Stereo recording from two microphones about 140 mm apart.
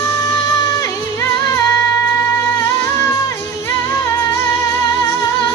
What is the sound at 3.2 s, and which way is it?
Music, 20° left (ahead or behind).